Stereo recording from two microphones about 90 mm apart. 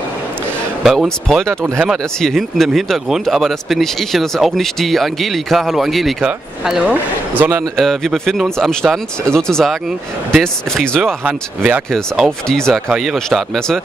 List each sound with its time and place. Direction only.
0.8 s speech: centre (ahead or behind)
6.9 s speech: 25° right (ahead or behind)
7.7 s speech: 5° left (ahead or behind)
11.2 s speech: 15° right (ahead or behind)
11.9 s speech: 5° left (ahead or behind)